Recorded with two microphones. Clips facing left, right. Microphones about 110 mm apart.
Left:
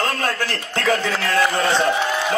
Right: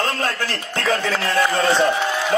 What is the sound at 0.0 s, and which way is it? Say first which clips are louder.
A man's voice: even; 25° right (ahead or behind).